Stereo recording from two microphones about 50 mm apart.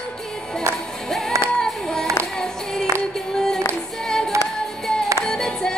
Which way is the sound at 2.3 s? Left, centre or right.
Centre.